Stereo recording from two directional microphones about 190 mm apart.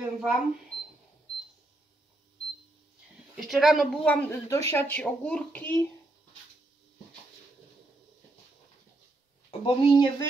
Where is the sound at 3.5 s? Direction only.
Centre (ahead or behind).